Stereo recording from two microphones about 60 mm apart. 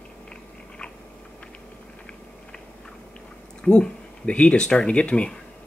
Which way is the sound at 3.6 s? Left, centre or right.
Centre.